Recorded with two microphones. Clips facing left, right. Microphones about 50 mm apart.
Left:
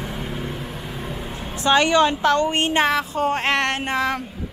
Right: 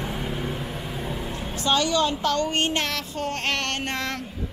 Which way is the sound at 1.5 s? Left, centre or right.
Left.